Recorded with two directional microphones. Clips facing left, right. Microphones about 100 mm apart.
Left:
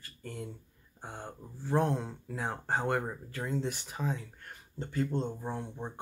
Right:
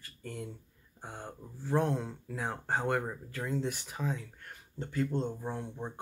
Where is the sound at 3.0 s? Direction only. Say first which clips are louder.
Even; 15° left (ahead or behind).